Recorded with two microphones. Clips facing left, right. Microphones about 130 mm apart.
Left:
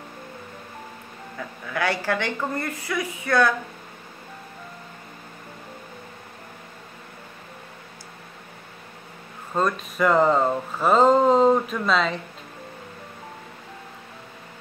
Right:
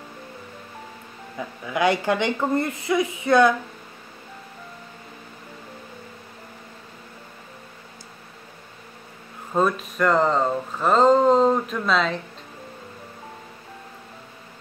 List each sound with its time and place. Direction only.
1.7 s a woman's voice: 20° right (ahead or behind)
9.6 s speech: 5° right (ahead or behind)
9.9 s speech: 5° left (ahead or behind)